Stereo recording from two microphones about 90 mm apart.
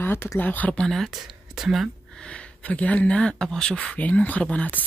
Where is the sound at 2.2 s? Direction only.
10° left (ahead or behind).